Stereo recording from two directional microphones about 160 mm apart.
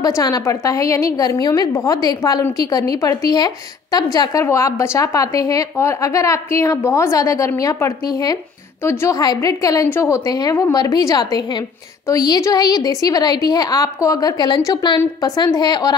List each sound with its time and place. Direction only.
0.2 s a woman's voice: 20° left (ahead or behind)